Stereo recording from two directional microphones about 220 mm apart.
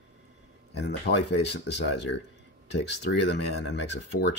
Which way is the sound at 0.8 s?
50° left (ahead or behind).